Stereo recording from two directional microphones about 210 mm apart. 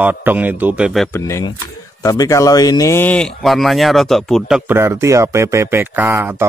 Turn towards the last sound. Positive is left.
turn(degrees=-10)  # may be behind; listen again after turning